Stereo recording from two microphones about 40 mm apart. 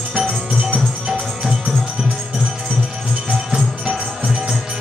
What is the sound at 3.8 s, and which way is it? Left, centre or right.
Music, centre.